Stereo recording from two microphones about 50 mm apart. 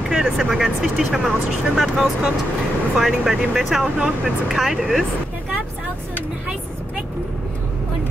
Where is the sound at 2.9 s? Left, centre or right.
Centre.